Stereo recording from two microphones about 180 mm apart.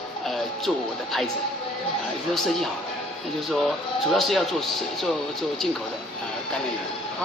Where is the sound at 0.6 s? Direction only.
Centre (ahead or behind).